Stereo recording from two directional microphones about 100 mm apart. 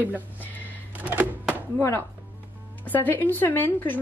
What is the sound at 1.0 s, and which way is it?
Thunk, 15° right (ahead or behind).